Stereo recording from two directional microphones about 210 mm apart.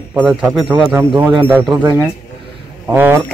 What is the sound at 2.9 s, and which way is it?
Speech, 10° right (ahead or behind).